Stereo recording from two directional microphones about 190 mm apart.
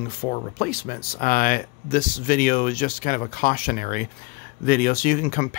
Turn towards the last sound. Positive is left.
turn(degrees=40)  # may be behind; listen again after turning